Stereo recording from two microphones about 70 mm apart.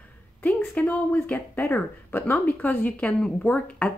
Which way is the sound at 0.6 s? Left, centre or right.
Left.